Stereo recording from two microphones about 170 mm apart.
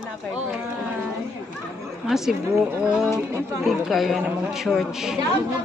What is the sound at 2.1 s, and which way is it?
A woman's voice, centre (ahead or behind).